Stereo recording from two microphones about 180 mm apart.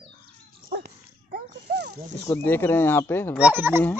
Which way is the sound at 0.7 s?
60° right (ahead or behind).